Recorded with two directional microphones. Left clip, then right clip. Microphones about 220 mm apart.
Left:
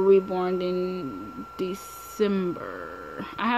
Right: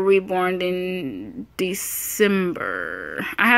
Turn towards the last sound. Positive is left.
turn(degrees=-20)  # may be behind; listen again after turning